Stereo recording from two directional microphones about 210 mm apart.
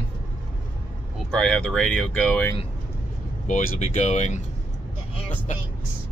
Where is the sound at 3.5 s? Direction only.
40° left (ahead or behind).